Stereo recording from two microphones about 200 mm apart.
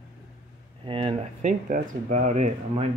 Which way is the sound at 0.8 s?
25° right (ahead or behind).